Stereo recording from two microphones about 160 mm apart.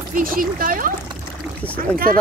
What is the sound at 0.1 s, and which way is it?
Speech, 60° right (ahead or behind).